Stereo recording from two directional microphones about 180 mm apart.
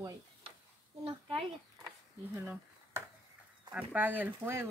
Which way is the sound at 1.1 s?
30° right (ahead or behind).